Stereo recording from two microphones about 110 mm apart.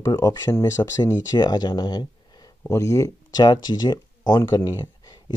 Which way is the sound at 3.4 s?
40° left (ahead or behind).